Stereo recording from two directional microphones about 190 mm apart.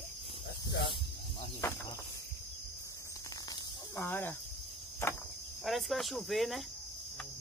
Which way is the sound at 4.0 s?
10° left (ahead or behind).